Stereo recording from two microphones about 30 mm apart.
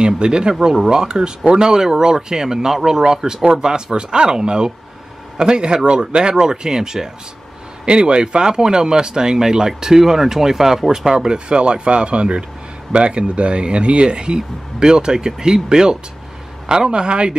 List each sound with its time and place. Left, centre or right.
0.0 s speech: right
7.8 s speech: right; by 11.2 s centre
11.2 s speech: right